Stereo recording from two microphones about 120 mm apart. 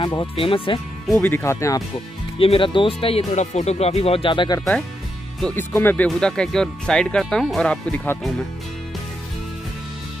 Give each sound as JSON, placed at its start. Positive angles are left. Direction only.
{"t": 0.0, "sound": "speech", "side_deg": 40}
{"t": 1.1, "sound": "speech", "side_deg": 15}
{"t": 2.3, "sound": "speech", "side_deg": 50}
{"t": 5.6, "sound": "speech", "side_deg": 20}
{"t": 6.0, "sound": "speech", "side_deg": 5}